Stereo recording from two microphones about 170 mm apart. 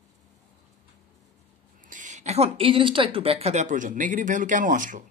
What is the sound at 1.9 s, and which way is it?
Speech, 45° right (ahead or behind).